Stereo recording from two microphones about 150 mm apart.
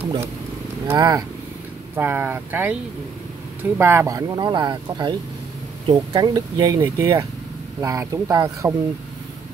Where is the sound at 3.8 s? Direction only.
15° right (ahead or behind).